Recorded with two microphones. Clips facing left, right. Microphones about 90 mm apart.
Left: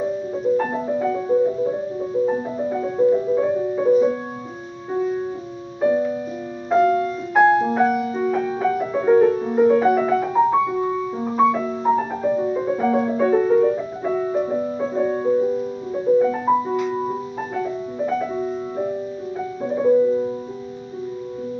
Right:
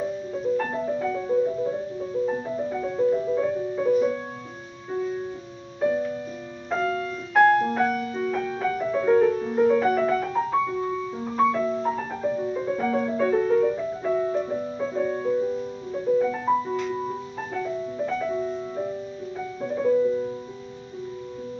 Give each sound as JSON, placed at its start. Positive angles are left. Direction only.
{"t": 0.6, "sound": "music", "side_deg": 15}
{"t": 5.8, "sound": "music", "side_deg": 15}
{"t": 6.7, "sound": "music", "side_deg": 5}
{"t": 12.3, "sound": "music", "side_deg": 25}